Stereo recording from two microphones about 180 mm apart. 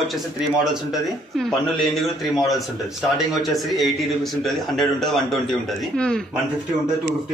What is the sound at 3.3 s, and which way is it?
A man's voice, centre (ahead or behind).